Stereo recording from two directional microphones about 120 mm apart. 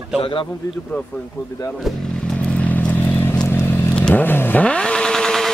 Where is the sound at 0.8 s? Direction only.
10° left (ahead or behind).